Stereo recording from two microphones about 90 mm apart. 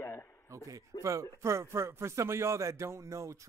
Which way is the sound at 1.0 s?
35° right (ahead or behind).